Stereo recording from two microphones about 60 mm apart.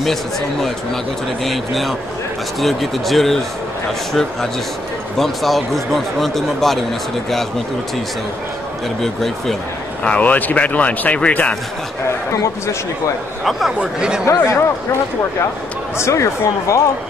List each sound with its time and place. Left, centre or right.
0.0 s speech: centre
9.0 s speech: centre
10.0 s speech: left
13.4 s speech: centre
13.7 s speech: centre
14.2 s speech: left
16.0 s speech: left